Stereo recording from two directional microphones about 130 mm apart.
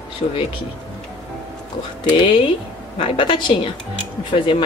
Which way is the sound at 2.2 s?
45° left (ahead or behind).